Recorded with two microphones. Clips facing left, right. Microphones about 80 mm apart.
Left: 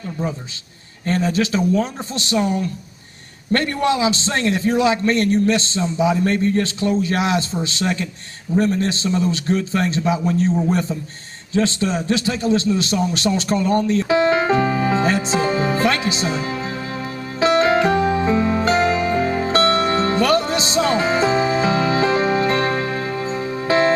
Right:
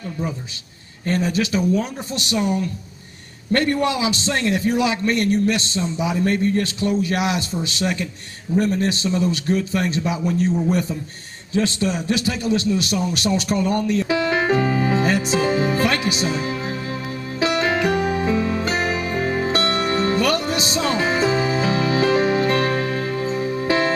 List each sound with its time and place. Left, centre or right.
1.0 s a man's voice: left
3.5 s a man's voice: left
17.4 s music: left